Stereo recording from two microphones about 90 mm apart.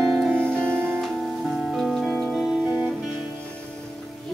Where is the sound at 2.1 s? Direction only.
15° left (ahead or behind).